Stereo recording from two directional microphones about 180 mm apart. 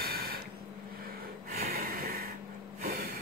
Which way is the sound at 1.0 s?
55° right (ahead or behind).